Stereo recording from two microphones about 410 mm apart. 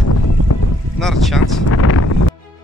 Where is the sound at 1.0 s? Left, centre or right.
Centre.